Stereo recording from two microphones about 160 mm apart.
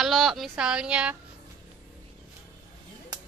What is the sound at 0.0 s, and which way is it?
Speech, centre (ahead or behind).